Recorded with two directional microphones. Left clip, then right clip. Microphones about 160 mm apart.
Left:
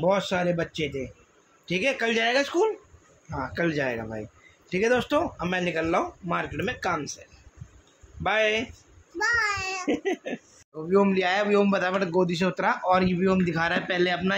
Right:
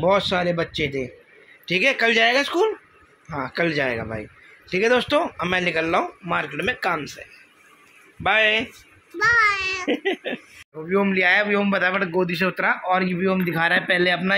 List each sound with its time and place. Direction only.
0.0 s speech: 15° right (ahead or behind)
8.2 s speech: 15° right (ahead or behind)
9.2 s a child's voice: 30° left (ahead or behind)
9.8 s speech: 10° right (ahead or behind)
10.9 s a man's voice: centre (ahead or behind)
13.6 s speech: 15° right (ahead or behind)
13.8 s a man's voice: 30° right (ahead or behind)